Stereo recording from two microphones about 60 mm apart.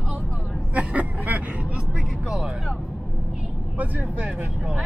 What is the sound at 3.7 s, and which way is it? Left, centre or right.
Speech, right.